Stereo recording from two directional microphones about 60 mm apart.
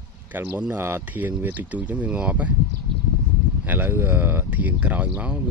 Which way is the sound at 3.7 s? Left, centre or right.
Right.